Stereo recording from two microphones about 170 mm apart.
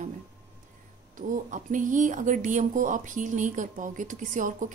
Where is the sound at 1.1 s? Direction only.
50° right (ahead or behind).